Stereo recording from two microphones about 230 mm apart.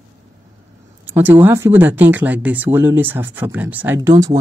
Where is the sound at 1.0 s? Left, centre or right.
Centre.